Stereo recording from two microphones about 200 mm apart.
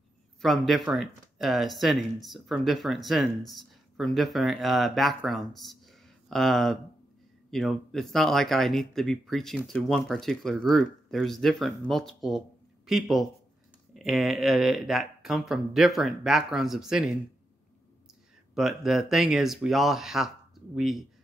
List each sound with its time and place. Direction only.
0.4 s speech: centre (ahead or behind)
18.5 s speech: centre (ahead or behind)